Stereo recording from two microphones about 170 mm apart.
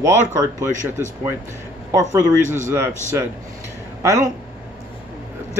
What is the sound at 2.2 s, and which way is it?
Speech, 45° right (ahead or behind).